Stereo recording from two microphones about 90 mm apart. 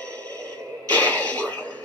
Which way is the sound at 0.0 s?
15° left (ahead or behind).